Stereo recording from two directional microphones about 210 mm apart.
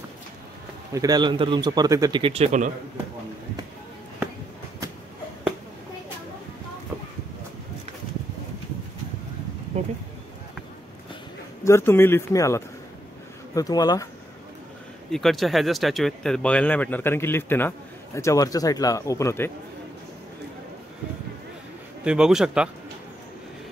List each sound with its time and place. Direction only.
0.9 s a man's voice: 20° right (ahead or behind)
9.7 s a sound: 35° right (ahead or behind)
11.6 s speech: 10° left (ahead or behind)
15.0 s speech: centre (ahead or behind)
22.0 s a man's voice: 5° right (ahead or behind)